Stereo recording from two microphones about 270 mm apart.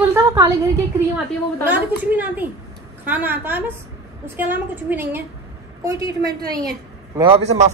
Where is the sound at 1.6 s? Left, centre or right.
Centre.